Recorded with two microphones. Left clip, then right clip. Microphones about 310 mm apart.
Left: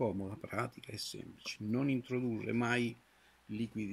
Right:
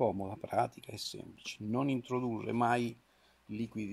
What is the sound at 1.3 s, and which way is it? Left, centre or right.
Speech, centre.